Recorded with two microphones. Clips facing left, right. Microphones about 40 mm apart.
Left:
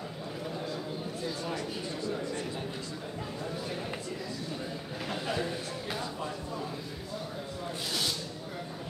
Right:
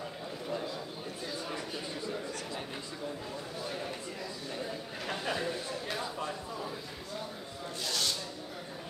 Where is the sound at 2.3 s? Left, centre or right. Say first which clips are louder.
Left 4 dB; left.